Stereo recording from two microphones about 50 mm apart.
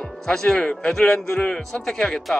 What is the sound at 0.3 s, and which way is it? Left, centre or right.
Speech, centre.